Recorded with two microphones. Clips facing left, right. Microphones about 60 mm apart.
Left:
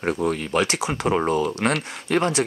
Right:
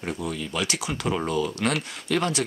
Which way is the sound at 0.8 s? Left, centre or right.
Left.